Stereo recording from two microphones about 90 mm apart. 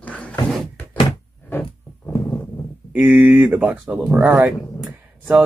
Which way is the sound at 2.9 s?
20° right (ahead or behind).